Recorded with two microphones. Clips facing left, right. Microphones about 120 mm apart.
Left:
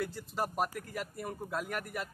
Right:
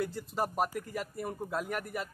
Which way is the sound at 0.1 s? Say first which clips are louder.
Right 2 dB; centre (ahead or behind).